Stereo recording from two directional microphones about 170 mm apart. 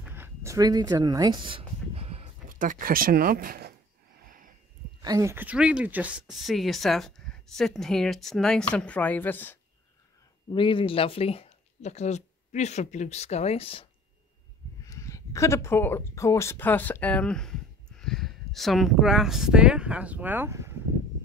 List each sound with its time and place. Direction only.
0.0 s a sound: 15° right (ahead or behind); by 2.2 s 35° right (ahead or behind)
2.5 s speech: 50° right (ahead or behind)
4.2 s a sound: 55° right (ahead or behind)
5.0 s speech: 20° right (ahead or behind); by 9.6 s 10° left (ahead or behind)
10.5 s speech: 30° left (ahead or behind)
14.9 s speech: 20° left (ahead or behind); by 20.7 s 15° right (ahead or behind)